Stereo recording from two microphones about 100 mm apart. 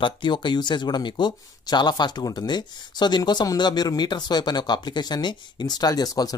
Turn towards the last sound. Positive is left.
turn(degrees=40)  # may be behind; listen again after turning